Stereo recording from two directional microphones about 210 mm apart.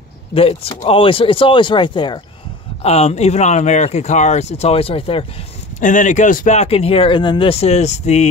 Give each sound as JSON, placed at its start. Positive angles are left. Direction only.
{"t": 0.3, "sound": "speech", "side_deg": 25}
{"t": 5.8, "sound": "speech", "side_deg": 35}